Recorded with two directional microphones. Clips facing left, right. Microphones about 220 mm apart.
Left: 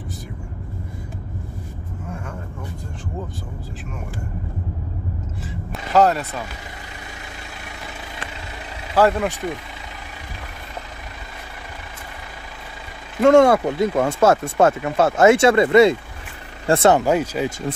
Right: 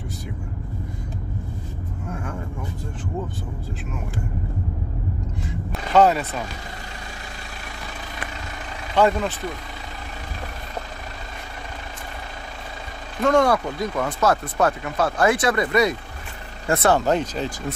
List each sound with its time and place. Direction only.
5.4 s a sound: centre (ahead or behind)
8.9 s speech: 5° left (ahead or behind)
13.2 s speech: 25° left (ahead or behind)
17.0 s speech: 10° left (ahead or behind)